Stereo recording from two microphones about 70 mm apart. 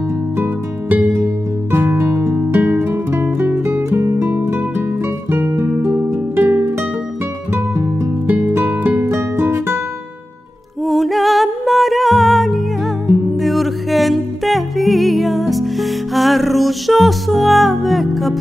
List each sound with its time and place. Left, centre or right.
0.4 s music: right
1.1 s music: right
8.3 s music: right
10.9 s music: centre